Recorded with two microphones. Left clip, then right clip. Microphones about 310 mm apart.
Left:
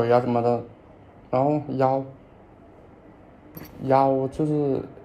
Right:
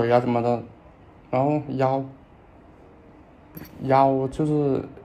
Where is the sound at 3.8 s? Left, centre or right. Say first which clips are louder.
Right 1 dB; centre.